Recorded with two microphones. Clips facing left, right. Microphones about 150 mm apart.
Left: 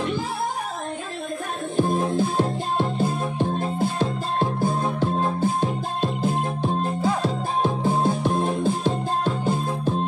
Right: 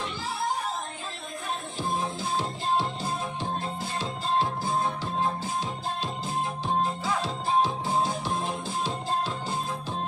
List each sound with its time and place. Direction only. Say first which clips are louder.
1.8 s music: left 11 dB; 55° left (ahead or behind)